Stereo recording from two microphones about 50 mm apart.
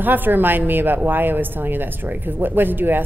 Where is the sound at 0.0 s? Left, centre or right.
Right.